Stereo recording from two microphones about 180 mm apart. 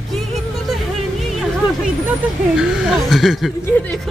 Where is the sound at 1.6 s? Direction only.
25° left (ahead or behind).